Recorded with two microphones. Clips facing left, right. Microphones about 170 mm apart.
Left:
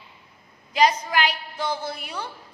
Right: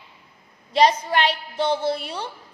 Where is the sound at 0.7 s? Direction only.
30° right (ahead or behind).